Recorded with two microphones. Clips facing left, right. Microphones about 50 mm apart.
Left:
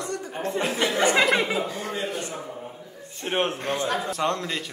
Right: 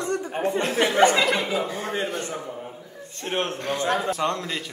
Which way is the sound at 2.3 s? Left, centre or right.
Centre.